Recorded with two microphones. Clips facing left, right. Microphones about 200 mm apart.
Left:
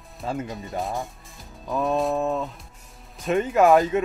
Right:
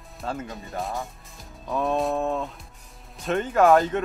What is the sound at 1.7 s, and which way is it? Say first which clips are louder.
Speech: left 1 dB; centre (ahead or behind).